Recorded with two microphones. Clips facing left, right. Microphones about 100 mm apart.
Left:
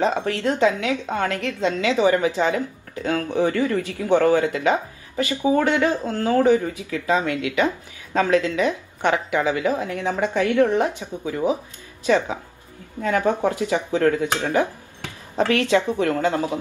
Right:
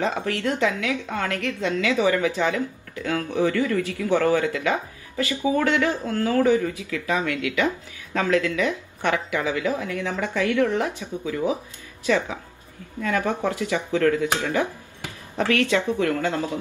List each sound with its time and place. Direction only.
0.3 s speech: 20° left (ahead or behind)